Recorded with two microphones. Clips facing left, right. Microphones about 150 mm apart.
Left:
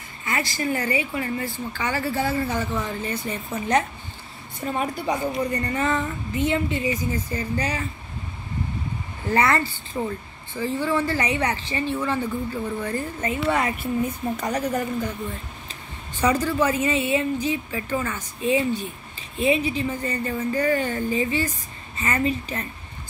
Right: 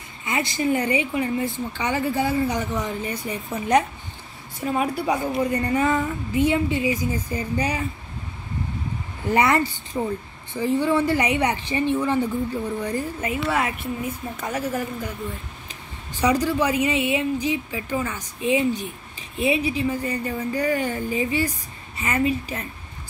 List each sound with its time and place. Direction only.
0.2 s a woman's voice: 20° right (ahead or behind)
9.3 s a woman's voice: 15° right (ahead or behind)